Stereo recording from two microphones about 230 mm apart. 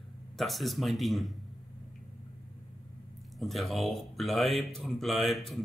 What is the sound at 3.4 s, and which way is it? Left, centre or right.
Speech, centre.